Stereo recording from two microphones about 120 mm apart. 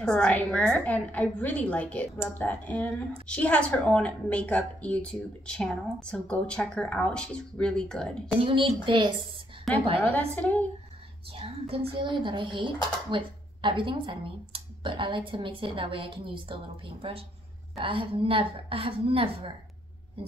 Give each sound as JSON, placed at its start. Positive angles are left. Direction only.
{"t": 0.0, "sound": "a woman's voice", "side_deg": 5}
{"t": 8.4, "sound": "speech", "side_deg": -50}
{"t": 10.0, "sound": "a woman's voice", "side_deg": 15}
{"t": 11.3, "sound": "speech", "side_deg": -50}